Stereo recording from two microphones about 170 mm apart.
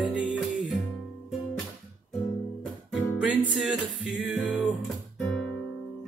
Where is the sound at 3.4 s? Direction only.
Centre (ahead or behind).